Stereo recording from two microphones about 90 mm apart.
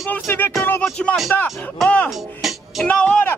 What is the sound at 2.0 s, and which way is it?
Music, centre (ahead or behind).